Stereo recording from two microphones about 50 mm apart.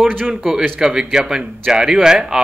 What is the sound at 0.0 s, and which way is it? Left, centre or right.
Speech, centre.